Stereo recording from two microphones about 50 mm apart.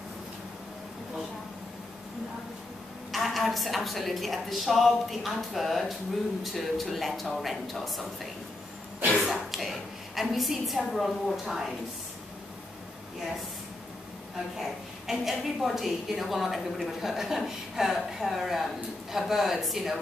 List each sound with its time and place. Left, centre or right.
3.1 s a woman's voice: centre
9.2 s a sound: centre
14.6 s a woman's voice: centre